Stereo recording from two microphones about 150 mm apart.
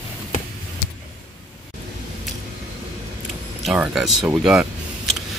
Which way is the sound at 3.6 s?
5° right (ahead or behind).